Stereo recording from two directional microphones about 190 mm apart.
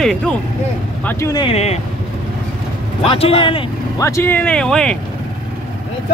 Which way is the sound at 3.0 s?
30° left (ahead or behind).